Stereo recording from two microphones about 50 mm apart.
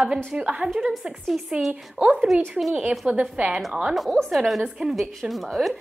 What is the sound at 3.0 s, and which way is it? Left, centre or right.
Speech, right.